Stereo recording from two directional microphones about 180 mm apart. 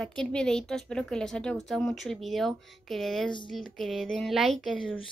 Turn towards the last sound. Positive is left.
turn(degrees=5)  # may be behind; listen again after turning